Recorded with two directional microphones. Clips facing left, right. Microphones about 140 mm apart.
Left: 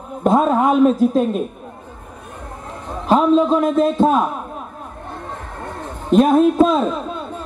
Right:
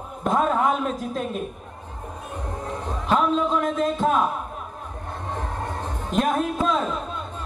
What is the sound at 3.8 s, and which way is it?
Speech, 30° left (ahead or behind).